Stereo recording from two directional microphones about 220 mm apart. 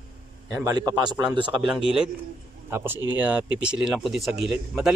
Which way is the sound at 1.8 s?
5° right (ahead or behind).